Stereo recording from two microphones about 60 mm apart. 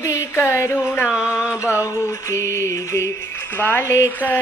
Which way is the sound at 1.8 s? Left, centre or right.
Left.